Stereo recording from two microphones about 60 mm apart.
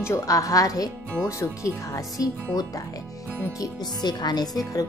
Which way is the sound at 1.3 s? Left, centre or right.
Left.